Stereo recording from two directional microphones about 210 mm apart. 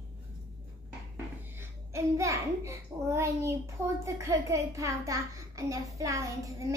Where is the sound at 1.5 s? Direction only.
15° right (ahead or behind).